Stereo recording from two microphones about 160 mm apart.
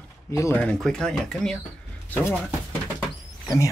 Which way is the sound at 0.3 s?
15° left (ahead or behind).